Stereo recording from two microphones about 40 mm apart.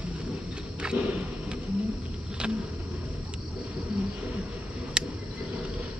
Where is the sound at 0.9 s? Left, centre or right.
Right.